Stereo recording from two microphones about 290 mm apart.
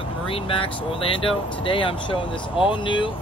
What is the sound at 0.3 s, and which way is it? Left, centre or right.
Speech, centre.